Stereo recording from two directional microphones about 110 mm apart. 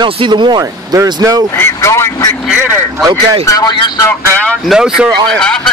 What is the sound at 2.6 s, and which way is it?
Speech, 15° right (ahead or behind).